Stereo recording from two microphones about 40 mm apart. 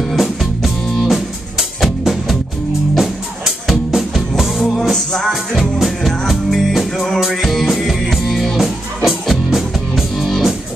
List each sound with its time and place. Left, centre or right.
0.0 s music: centre
4.6 s music: centre
4.9 s music: centre
5.5 s music: centre